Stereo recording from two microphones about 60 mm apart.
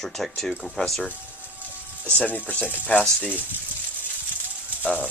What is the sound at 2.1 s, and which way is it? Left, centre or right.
Speech, left.